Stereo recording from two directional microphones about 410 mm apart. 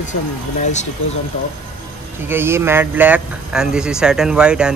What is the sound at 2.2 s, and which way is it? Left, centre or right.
Speech, centre.